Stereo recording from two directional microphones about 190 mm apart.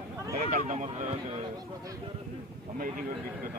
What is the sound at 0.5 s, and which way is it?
Speech, 40° right (ahead or behind).